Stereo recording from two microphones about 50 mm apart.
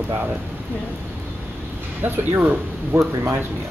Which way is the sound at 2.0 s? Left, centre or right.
Right.